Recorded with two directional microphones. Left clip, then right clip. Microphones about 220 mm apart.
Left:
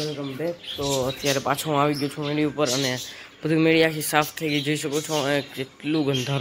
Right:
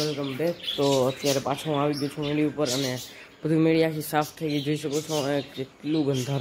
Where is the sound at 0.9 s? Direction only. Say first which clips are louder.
Left 3 dB; 15° right (ahead or behind).